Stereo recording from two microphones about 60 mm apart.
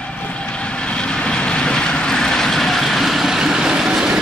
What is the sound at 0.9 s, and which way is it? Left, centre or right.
Vehicle, centre.